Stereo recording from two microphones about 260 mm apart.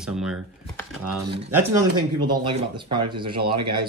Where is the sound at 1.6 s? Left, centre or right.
Centre.